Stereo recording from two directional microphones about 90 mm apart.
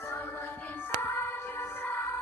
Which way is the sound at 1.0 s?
20° left (ahead or behind).